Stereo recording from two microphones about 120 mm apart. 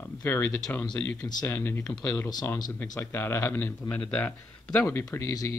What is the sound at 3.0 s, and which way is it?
Speech, 20° left (ahead or behind).